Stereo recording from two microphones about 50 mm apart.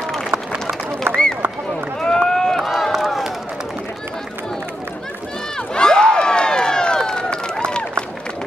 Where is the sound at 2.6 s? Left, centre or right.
Centre.